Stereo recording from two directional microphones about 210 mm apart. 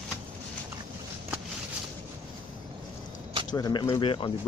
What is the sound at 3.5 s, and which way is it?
Speech, 15° left (ahead or behind).